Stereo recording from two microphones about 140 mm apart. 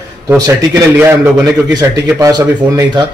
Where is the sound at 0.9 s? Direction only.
15° right (ahead or behind).